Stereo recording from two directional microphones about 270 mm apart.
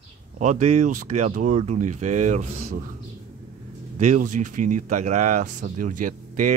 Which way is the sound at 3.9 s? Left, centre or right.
Right.